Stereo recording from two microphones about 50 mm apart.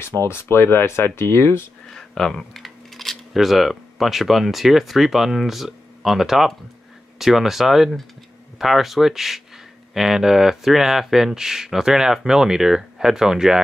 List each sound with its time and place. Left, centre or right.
0.0 s speech: left
1.9 s speech: centre